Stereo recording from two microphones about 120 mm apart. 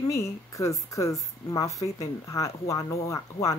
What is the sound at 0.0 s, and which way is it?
A woman's voice, 25° left (ahead or behind).